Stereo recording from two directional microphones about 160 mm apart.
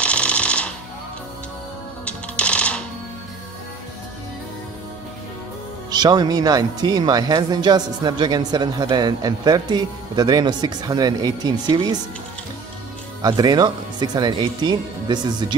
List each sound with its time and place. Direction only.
0.0 s music: 5° left (ahead or behind)
2.0 s music: 5° left (ahead or behind)
5.9 s speech: 25° right (ahead or behind)
13.2 s speech: 25° right (ahead or behind)